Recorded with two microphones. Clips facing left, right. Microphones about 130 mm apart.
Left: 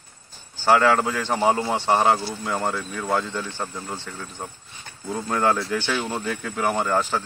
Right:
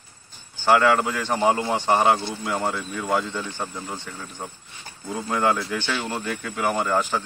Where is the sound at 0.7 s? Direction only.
10° right (ahead or behind).